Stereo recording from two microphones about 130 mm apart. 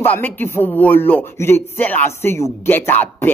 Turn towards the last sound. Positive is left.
turn(degrees=15)  # may be behind; listen again after turning